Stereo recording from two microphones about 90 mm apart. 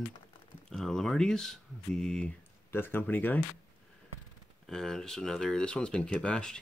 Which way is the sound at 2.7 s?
25° left (ahead or behind).